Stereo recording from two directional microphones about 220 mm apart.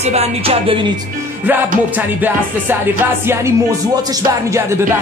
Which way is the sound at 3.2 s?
10° right (ahead or behind).